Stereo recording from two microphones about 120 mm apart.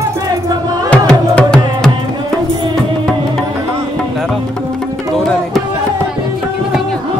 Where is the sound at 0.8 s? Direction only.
10° left (ahead or behind).